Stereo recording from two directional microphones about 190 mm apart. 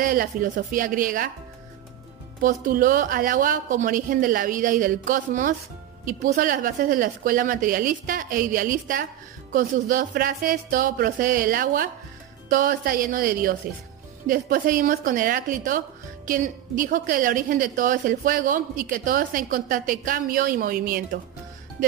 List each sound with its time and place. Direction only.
0.0 s a woman's voice: 50° right (ahead or behind)
2.4 s a woman's voice: 45° right (ahead or behind)